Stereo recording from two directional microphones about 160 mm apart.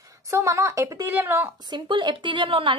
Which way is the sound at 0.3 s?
20° right (ahead or behind).